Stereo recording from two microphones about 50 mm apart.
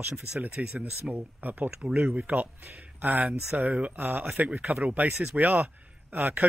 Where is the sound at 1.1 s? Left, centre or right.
Right.